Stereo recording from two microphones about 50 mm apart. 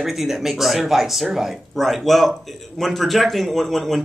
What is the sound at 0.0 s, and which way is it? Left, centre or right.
Speech, centre.